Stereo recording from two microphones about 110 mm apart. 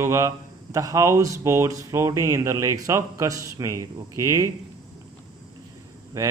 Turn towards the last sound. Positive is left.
turn(degrees=-30)  # may be behind; listen again after turning